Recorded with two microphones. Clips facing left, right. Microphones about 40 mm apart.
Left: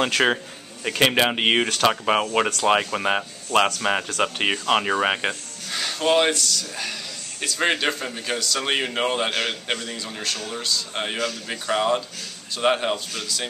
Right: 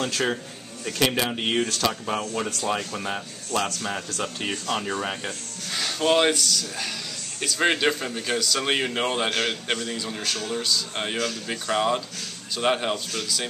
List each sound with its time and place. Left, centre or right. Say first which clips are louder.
0.0 s speech: left 5 dB; left
2.3 s speech: left 7 dB; left
5.7 s a man's voice: left 1 dB; centre